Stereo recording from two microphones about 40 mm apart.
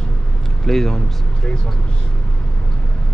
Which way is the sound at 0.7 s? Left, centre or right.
Centre.